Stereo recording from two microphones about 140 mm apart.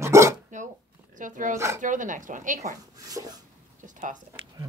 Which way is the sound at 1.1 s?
70° right (ahead or behind).